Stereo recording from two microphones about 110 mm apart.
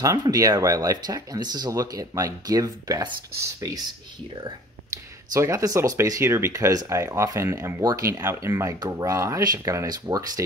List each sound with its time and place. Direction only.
0.0 s speech: 35° right (ahead or behind)
5.3 s speech: 30° right (ahead or behind)